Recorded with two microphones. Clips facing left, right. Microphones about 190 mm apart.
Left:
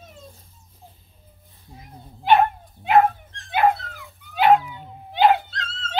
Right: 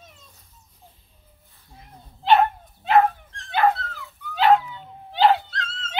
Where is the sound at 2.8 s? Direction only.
15° left (ahead or behind).